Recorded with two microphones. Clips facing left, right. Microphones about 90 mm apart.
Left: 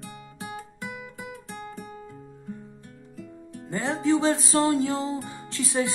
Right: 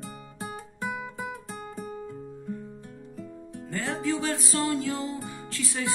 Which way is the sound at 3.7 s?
20° left (ahead or behind).